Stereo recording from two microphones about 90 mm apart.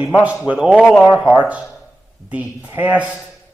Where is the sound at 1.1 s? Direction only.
10° right (ahead or behind).